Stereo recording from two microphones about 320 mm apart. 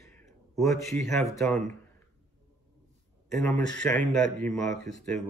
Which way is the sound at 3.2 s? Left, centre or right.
Centre.